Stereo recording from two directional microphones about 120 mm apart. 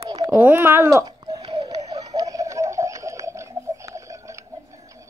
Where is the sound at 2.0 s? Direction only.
30° right (ahead or behind).